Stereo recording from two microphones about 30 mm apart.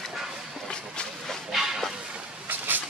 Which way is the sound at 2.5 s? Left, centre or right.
Right.